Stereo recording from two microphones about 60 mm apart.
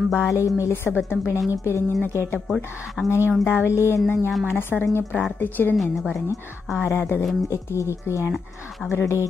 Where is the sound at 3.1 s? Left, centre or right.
Left.